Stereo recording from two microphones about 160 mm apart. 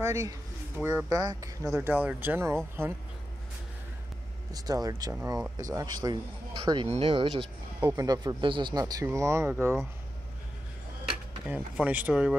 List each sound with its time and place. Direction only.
0.0 s speech: 20° right (ahead or behind)
1.8 s speech: 10° right (ahead or behind)
4.5 s speech: 25° right (ahead or behind)
6.9 s speech: 35° right (ahead or behind)
7.8 s speech: 20° right (ahead or behind)
11.4 s speech: 5° right (ahead or behind)